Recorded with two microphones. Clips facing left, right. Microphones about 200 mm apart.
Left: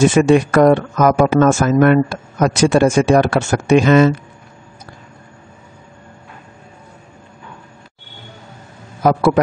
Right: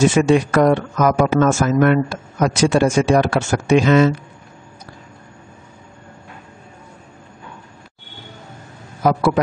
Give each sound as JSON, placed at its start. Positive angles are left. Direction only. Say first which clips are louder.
{"t": 0.0, "sound": "speech", "louder": "left 3 dB", "side_deg": 55}
{"t": 9.0, "sound": "a man's voice", "louder": "left 3 dB", "side_deg": 55}